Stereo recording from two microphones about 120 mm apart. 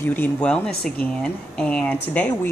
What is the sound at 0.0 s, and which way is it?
Speech, 15° left (ahead or behind).